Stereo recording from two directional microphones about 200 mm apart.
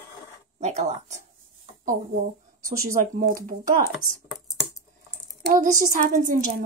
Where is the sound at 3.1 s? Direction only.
40° right (ahead or behind).